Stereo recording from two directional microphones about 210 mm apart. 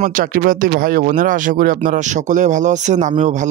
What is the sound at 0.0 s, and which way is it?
Speech, 40° right (ahead or behind).